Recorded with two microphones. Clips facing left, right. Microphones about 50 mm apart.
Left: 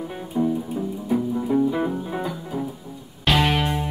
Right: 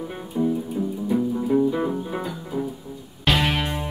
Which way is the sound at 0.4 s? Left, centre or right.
Centre.